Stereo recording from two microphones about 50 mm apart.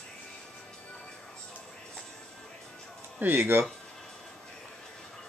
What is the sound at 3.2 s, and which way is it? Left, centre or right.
Speech, right.